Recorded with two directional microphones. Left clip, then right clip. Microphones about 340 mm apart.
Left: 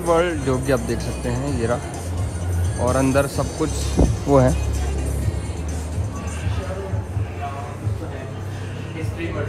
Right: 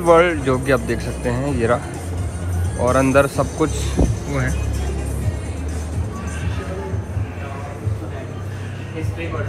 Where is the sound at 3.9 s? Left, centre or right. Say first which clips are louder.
Even; centre.